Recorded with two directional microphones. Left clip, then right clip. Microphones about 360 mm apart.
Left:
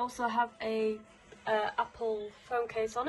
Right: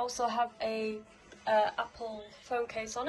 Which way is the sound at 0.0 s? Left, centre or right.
Centre.